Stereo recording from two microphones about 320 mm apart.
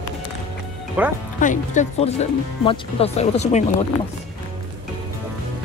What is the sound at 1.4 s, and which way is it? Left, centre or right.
Speech, left.